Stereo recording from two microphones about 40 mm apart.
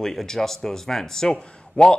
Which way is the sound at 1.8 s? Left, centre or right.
Left.